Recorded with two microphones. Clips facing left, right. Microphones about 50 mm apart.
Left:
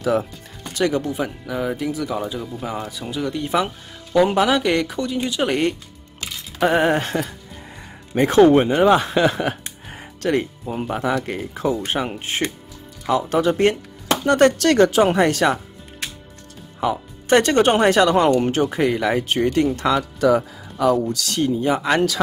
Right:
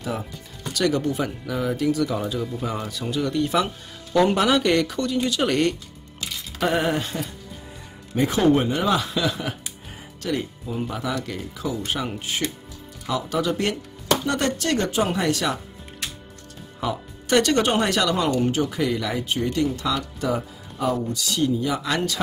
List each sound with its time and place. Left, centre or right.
0.0 s speech: left
0.7 s speech: left
1.0 s speech: centre
6.8 s speech: left
8.1 s speech: left
10.8 s speech: left
14.2 s speech: left
14.6 s speech: left
15.0 s speech: left
16.8 s speech: left
19.2 s speech: left
20.0 s speech: left
21.4 s speech: left